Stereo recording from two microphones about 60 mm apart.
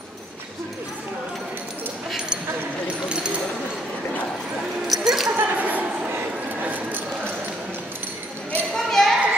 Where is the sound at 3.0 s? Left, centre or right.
Centre.